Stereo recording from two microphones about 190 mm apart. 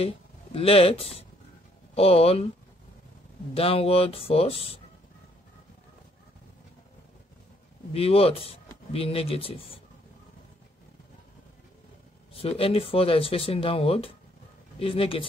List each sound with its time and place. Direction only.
0.0 s speech: 30° left (ahead or behind)
3.5 s speech: 30° left (ahead or behind)
7.9 s speech: 30° left (ahead or behind)
12.4 s speech: 30° left (ahead or behind)